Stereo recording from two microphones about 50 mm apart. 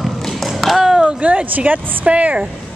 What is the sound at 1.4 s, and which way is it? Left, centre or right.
Speech, right.